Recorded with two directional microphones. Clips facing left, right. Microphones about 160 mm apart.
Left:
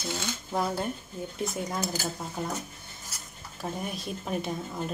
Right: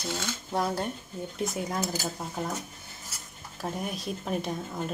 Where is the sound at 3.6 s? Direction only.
Centre (ahead or behind).